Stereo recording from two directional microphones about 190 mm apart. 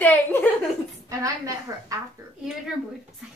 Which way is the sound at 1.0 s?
15° right (ahead or behind).